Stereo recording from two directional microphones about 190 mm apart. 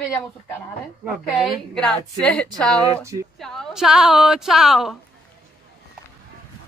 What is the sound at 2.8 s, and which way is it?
Speech, 15° right (ahead or behind).